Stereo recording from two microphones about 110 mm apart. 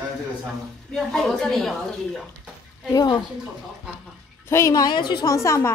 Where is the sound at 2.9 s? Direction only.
40° left (ahead or behind).